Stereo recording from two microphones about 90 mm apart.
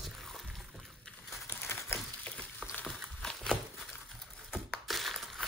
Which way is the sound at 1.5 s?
30° left (ahead or behind).